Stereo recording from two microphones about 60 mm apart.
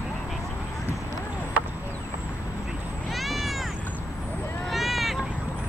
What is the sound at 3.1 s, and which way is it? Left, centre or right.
Cat, centre.